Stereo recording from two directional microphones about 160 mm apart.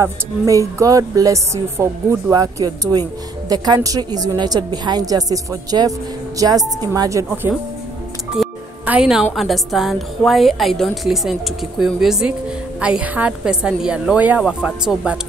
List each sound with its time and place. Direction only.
0.0 s a woman's voice: 20° right (ahead or behind)
8.4 s music: centre (ahead or behind)
8.8 s a woman's voice: 5° right (ahead or behind)